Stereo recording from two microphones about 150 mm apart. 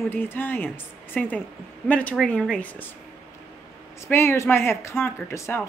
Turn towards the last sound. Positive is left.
turn(degrees=20)  # may be behind; listen again after turning